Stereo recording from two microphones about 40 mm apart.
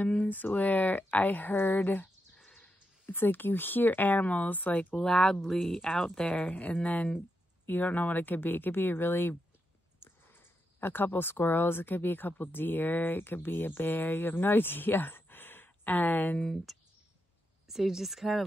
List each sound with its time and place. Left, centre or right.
0.3 s speech: left
3.1 s speech: left
4.9 s speech: centre
6.2 s speech: left
7.6 s speech: left
16.7 s clicking: centre
17.6 s speech: centre